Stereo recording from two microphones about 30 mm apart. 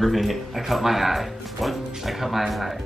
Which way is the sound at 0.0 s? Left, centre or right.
Centre.